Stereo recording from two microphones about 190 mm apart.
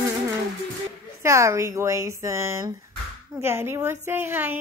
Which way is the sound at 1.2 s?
15° right (ahead or behind).